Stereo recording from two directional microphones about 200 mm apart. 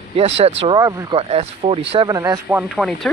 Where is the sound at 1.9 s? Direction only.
20° right (ahead or behind).